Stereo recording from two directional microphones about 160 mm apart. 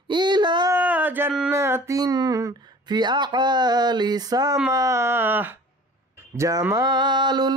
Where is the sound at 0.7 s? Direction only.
10° right (ahead or behind).